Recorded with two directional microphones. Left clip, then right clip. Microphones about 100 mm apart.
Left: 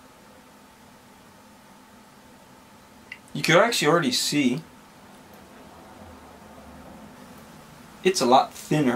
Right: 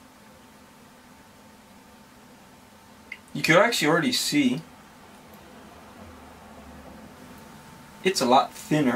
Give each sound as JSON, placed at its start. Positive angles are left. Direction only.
{"t": 3.3, "sound": "speech", "side_deg": 15}
{"t": 8.0, "sound": "speech", "side_deg": 15}